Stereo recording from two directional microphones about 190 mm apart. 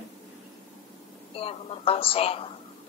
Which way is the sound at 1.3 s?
30° left (ahead or behind).